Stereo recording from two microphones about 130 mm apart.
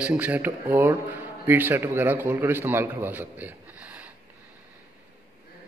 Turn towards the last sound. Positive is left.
turn(degrees=-10)  # may be behind; listen again after turning